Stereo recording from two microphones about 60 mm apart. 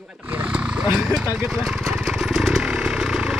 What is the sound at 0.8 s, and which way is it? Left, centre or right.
Vehicle, centre.